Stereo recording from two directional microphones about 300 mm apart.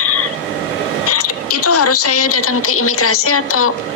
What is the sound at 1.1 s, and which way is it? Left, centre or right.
A woman's voice, left.